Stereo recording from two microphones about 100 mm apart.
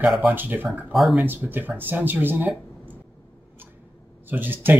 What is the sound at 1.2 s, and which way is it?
Speech, 20° right (ahead or behind).